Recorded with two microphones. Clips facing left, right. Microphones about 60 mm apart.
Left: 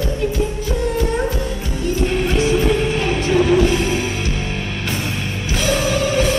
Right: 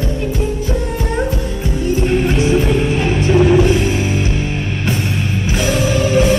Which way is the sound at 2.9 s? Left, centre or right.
Right.